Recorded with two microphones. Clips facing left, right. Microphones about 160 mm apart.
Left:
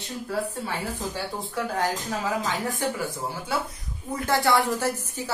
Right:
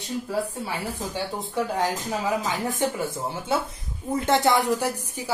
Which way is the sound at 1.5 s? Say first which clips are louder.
Right 2 dB; 15° right (ahead or behind).